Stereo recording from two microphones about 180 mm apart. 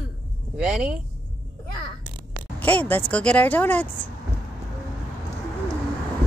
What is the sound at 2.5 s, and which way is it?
Speech, 10° left (ahead or behind).